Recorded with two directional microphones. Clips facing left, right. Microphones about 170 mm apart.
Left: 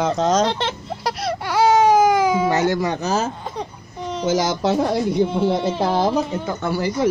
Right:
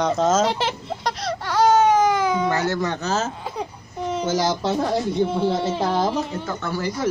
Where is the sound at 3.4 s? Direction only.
5° right (ahead or behind).